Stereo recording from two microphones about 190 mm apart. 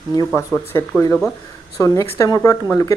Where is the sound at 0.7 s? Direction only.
15° left (ahead or behind).